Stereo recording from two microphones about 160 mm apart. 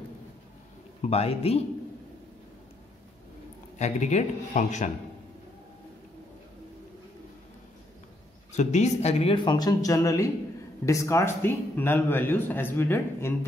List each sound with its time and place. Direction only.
1.0 s a man's voice: 40° left (ahead or behind)
3.7 s a man's voice: 45° left (ahead or behind)
8.5 s a man's voice: 45° left (ahead or behind); by 13.5 s 15° left (ahead or behind)